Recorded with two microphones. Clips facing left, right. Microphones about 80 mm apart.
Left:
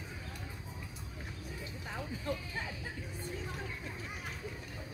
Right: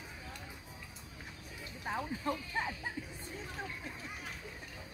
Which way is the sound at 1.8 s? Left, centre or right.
Right.